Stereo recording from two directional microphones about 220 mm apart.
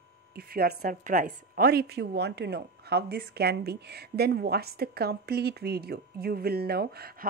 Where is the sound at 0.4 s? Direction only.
45° right (ahead or behind).